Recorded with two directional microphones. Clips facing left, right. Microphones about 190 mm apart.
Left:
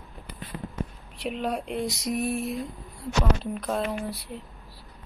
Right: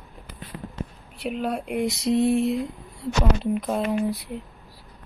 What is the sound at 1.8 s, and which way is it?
Speech, 25° right (ahead or behind).